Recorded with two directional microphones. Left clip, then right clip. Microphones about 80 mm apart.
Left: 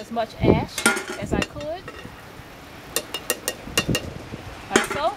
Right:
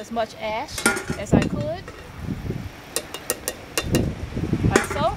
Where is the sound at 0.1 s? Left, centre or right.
Right.